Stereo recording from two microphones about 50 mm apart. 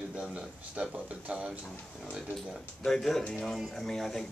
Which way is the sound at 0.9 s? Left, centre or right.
Right.